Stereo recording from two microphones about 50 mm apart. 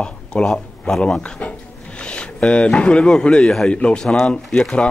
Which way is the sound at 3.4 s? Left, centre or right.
Centre.